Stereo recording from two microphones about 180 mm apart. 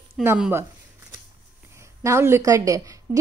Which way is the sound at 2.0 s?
15° right (ahead or behind).